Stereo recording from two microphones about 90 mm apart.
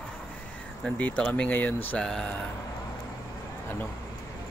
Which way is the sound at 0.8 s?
15° left (ahead or behind).